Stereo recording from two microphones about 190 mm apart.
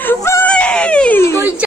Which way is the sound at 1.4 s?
10° right (ahead or behind).